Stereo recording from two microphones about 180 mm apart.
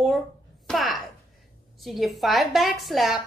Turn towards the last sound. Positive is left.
turn(degrees=0)  # may be behind; listen again after turning